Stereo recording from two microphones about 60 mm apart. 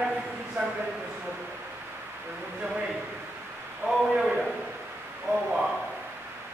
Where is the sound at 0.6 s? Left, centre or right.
Right.